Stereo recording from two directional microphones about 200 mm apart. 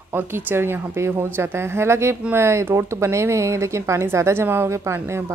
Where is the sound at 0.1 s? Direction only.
10° right (ahead or behind).